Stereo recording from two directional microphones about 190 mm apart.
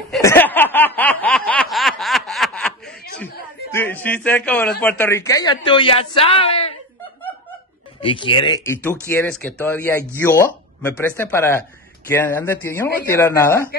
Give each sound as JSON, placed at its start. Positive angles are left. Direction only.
{"t": 0.2, "sound": "snicker", "side_deg": 10}
{"t": 3.7, "sound": "a man's voice", "side_deg": 10}
{"t": 8.0, "sound": "a man's voice", "side_deg": 25}